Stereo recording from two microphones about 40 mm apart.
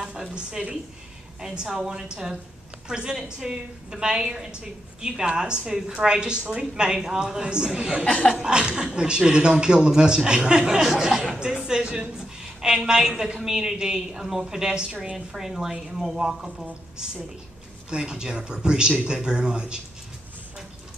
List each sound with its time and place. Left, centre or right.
0.1 s a woman's voice: right
1.4 s a woman's voice: centre
5.7 s a woman's voice: centre
8.0 s speech: left
8.4 s a woman's voice: centre
17.8 s speech: right